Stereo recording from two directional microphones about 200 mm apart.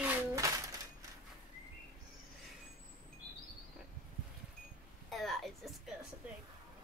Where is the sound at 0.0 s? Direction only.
15° right (ahead or behind).